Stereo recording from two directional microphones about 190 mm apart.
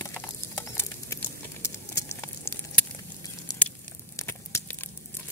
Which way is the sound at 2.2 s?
5° left (ahead or behind).